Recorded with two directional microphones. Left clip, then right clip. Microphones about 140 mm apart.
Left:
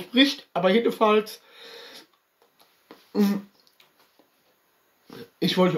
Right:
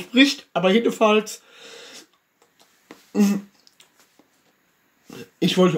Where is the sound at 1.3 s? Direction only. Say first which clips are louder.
Right 3 dB; 15° right (ahead or behind).